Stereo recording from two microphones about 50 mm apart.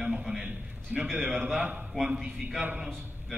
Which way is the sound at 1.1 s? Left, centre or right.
Centre.